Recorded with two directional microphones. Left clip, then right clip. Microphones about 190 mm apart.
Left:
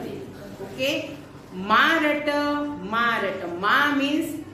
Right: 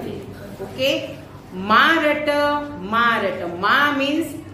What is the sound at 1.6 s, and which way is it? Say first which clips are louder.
A woman's voice: right 4 dB; 15° right (ahead or behind).